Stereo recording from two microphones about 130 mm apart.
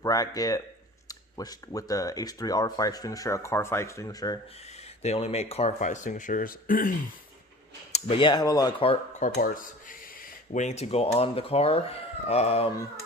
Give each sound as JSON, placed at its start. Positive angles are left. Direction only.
{"t": 0.0, "sound": "speech", "side_deg": 30}
{"t": 5.0, "sound": "speech", "side_deg": 50}
{"t": 8.2, "sound": "speech", "side_deg": 35}
{"t": 8.7, "sound": "speech", "side_deg": 45}
{"t": 9.2, "sound": "speech", "side_deg": 90}